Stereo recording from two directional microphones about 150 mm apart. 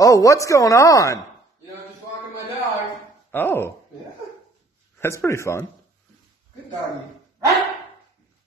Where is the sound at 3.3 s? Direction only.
15° left (ahead or behind).